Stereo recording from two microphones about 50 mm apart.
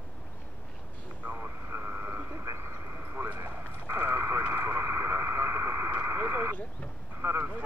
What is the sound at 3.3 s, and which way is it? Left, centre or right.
Clip-clop, right.